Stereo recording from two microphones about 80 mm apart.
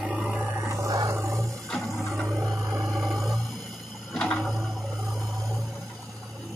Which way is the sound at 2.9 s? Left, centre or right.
Centre.